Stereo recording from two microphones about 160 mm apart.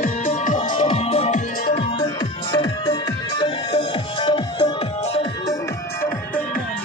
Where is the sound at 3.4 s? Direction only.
30° left (ahead or behind).